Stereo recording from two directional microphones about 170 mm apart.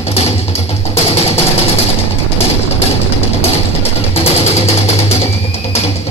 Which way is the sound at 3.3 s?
35° left (ahead or behind).